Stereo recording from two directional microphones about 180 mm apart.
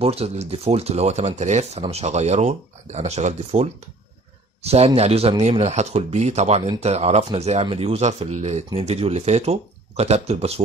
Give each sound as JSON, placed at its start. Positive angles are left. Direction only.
{"t": 0.0, "sound": "speech", "side_deg": -35}